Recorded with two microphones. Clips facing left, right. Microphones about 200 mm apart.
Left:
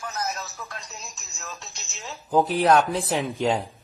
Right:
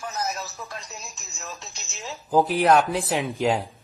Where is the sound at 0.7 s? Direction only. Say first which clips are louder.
Right 2 dB; centre (ahead or behind).